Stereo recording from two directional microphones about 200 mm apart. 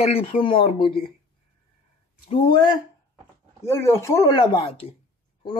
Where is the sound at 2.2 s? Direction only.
25° left (ahead or behind).